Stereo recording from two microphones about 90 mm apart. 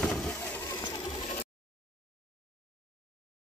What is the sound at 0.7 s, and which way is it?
Sewing machine, 65° left (ahead or behind).